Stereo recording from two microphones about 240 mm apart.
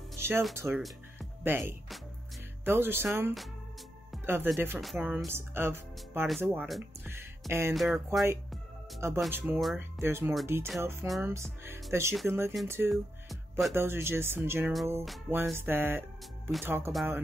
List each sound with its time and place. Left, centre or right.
0.2 s music: centre
0.6 s speech: centre
7.7 s speech: centre